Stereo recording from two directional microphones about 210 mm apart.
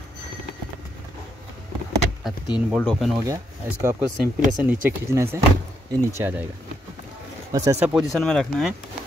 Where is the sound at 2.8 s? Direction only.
5° left (ahead or behind).